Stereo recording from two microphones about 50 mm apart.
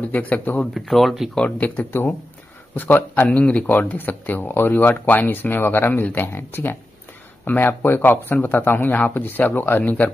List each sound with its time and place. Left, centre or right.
0.0 s speech: left
0.7 s speech: centre
1.4 s speech: left
1.9 s speech: left
3.3 s speech: left